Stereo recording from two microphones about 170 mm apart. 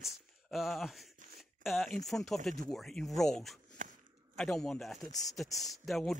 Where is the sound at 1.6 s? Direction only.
Centre (ahead or behind).